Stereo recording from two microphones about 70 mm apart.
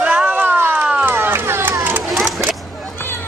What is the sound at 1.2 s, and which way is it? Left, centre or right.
Run, right.